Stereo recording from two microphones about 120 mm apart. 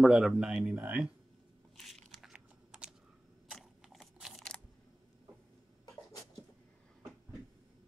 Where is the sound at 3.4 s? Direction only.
Centre (ahead or behind).